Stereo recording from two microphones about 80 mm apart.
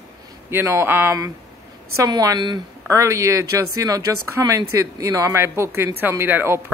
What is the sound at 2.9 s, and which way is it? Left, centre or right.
Speech, right.